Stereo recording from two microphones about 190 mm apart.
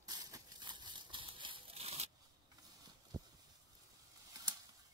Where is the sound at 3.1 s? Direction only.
20° right (ahead or behind).